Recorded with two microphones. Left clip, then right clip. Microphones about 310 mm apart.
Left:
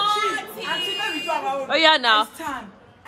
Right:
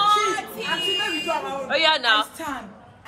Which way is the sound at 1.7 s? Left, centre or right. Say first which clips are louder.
Left 2 dB; left.